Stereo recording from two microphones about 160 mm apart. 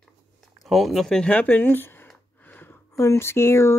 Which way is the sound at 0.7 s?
Centre (ahead or behind).